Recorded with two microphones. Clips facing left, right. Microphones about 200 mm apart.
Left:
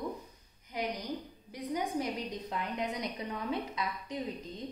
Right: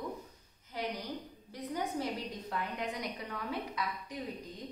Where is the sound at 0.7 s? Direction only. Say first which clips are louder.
Left 2 dB; 15° left (ahead or behind).